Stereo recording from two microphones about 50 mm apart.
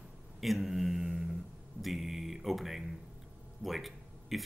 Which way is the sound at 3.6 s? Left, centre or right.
Centre.